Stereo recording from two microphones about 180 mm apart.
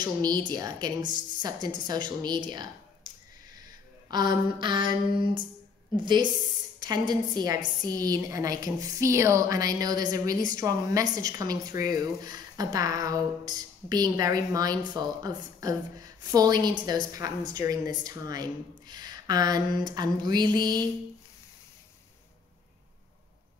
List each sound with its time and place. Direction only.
0.0 s a woman's voice: 20° right (ahead or behind)
4.1 s a woman's voice: 25° right (ahead or behind)
5.9 s a woman's voice: 25° right (ahead or behind)